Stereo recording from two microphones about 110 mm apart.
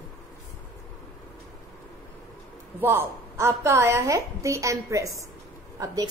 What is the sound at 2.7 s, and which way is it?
A woman's voice, 20° right (ahead or behind).